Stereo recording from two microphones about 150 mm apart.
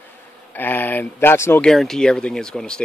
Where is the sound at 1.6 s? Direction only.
5° left (ahead or behind).